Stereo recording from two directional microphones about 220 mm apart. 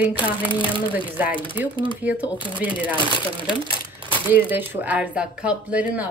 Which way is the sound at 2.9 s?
20° left (ahead or behind).